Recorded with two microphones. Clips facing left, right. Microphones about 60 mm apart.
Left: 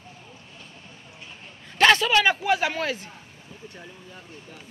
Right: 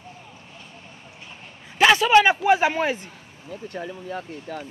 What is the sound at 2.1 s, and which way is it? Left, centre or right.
Speech, right.